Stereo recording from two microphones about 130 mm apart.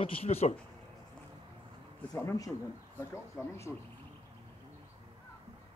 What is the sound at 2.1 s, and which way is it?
Speech, 25° left (ahead or behind).